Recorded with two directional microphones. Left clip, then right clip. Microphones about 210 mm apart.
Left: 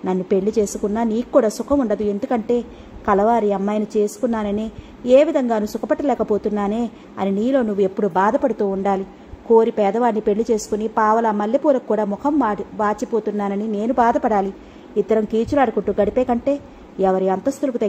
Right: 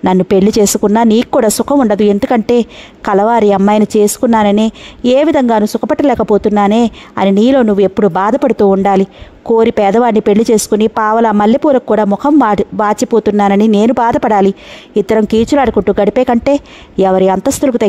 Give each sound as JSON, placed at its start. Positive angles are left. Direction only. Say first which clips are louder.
{"t": 0.0, "sound": "a woman's voice", "louder": "right 10 dB", "side_deg": -55}